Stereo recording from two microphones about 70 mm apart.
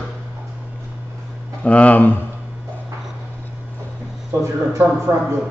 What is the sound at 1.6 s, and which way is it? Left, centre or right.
Speech, centre.